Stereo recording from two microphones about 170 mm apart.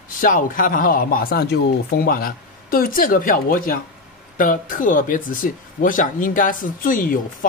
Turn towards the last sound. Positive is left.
turn(degrees=55)  # may be behind; listen again after turning